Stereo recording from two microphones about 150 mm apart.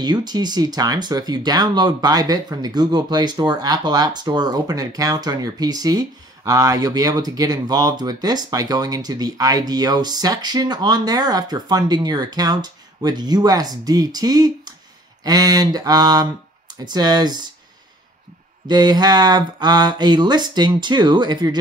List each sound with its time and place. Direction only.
0.0 s speech: 30° right (ahead or behind)
18.7 s speech: 25° right (ahead or behind)